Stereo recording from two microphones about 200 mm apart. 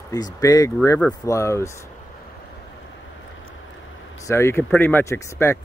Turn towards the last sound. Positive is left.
turn(degrees=10)  # may be behind; listen again after turning